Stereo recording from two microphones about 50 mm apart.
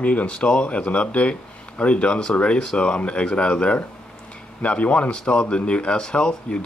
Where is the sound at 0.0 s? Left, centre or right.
Left.